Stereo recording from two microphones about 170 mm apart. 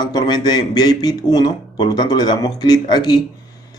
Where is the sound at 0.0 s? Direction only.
25° left (ahead or behind).